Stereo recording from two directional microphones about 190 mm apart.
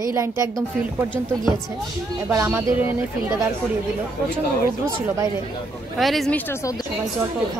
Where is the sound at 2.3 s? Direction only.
15° right (ahead or behind).